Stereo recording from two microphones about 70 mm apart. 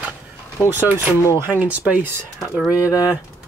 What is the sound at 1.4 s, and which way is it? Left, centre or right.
Speech, right.